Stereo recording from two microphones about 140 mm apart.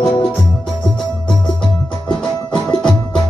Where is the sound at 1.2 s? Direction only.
5° left (ahead or behind).